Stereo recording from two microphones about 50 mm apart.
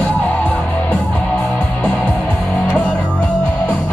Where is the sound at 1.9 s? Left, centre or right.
Left.